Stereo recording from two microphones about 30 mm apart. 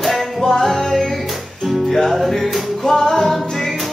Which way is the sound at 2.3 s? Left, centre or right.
Centre.